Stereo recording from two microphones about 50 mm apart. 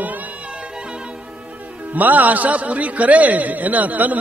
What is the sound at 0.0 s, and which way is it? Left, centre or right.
Music, right.